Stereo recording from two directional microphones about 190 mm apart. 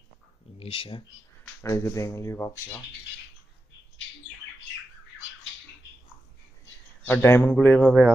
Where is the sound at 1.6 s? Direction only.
15° left (ahead or behind).